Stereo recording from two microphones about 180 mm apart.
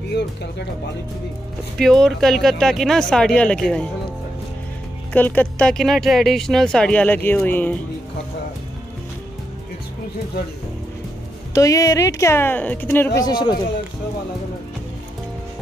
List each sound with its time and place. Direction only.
1.8 s speech: centre (ahead or behind)
5.1 s speech: 10° left (ahead or behind)
11.5 s speech: 20° left (ahead or behind)
13.2 s speech: 25° left (ahead or behind)